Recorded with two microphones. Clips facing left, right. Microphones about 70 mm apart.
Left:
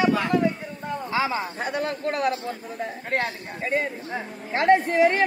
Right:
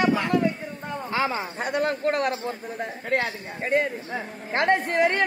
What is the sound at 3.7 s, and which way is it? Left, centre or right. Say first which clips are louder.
Speech: right 3 dB; right.